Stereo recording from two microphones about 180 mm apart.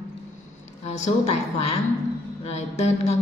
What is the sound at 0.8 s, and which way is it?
A woman's voice, 40° left (ahead or behind).